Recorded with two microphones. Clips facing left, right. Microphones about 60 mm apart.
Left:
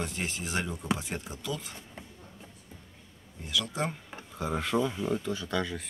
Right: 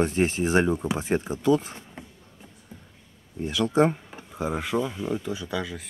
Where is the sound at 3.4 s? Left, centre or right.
Right.